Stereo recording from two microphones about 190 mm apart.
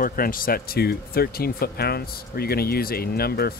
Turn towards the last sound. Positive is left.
turn(degrees=55)  # may be behind; listen again after turning